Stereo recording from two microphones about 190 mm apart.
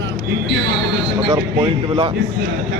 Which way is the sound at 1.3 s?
25° right (ahead or behind).